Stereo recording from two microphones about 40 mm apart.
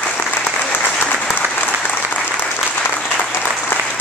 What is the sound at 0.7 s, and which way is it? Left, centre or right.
Applause, left.